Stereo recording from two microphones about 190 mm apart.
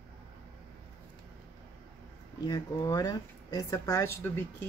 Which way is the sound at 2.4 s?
20° left (ahead or behind).